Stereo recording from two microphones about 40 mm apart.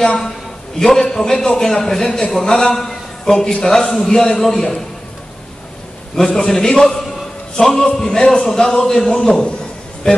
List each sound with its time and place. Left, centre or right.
0.7 s a man's voice: centre
6.1 s a man's voice: centre